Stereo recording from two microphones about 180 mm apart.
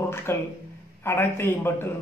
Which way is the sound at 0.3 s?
15° left (ahead or behind).